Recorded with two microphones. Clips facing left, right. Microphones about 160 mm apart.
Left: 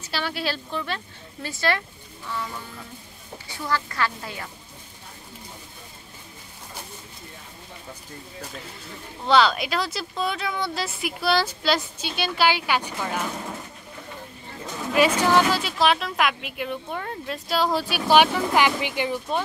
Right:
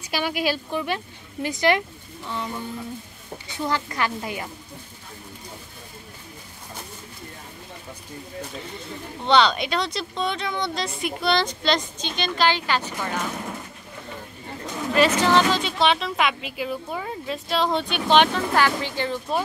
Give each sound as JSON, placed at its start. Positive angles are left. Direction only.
{"t": 0.0, "sound": "speech", "side_deg": -15}
{"t": 9.2, "sound": "speech", "side_deg": 5}
{"t": 15.0, "sound": "speech", "side_deg": 10}